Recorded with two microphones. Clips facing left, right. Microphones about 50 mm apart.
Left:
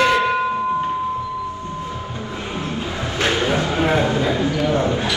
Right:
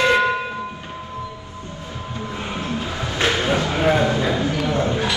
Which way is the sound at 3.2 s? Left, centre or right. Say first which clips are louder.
Left 1 dB; left.